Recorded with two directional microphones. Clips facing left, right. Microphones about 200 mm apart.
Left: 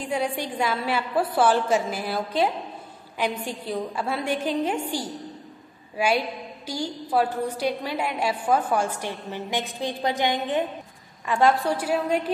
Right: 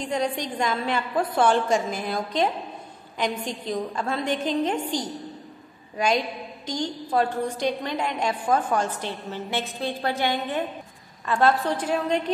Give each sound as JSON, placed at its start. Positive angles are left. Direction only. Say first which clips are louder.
{"t": 0.0, "sound": "a woman's voice", "louder": "even", "side_deg": 10}